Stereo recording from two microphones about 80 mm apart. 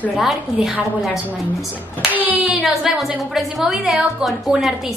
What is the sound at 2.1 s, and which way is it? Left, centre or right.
Hands, right.